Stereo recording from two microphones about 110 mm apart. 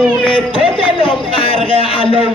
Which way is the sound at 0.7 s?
50° left (ahead or behind).